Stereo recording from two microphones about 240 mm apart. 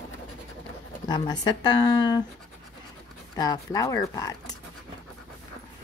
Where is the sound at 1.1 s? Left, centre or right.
Centre.